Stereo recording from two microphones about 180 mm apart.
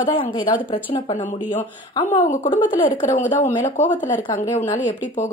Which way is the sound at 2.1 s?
40° left (ahead or behind).